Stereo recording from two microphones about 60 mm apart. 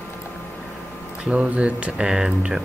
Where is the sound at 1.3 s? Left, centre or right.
Centre.